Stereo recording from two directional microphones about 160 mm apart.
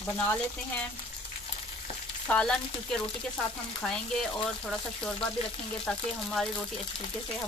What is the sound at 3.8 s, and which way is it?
Speech, 5° left (ahead or behind).